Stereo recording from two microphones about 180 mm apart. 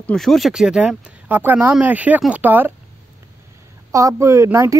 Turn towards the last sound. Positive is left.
turn(degrees=-15)  # may be behind; listen again after turning